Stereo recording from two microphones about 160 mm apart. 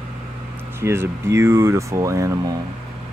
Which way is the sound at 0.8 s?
15° right (ahead or behind).